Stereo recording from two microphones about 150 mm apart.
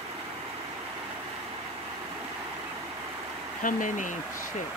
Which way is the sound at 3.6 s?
60° left (ahead or behind).